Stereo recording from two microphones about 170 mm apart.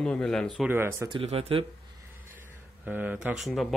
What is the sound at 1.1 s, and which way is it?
Speech, 35° right (ahead or behind).